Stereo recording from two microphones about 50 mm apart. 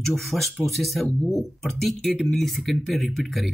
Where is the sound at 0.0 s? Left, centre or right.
Centre.